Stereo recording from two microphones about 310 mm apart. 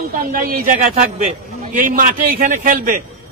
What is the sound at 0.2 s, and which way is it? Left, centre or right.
A man's voice, right.